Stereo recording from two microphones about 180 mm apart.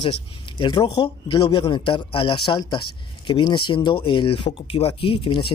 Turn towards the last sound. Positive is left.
turn(degrees=30)  # may be behind; listen again after turning